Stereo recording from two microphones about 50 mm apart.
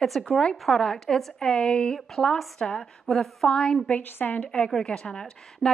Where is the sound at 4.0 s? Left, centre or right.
Left.